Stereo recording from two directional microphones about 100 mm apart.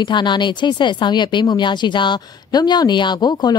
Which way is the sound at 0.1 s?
50° left (ahead or behind).